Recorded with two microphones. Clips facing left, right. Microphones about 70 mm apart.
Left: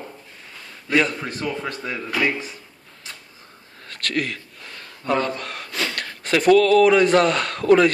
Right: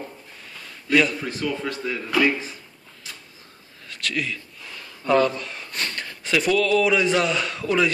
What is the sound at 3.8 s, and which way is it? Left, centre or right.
A man's voice, left.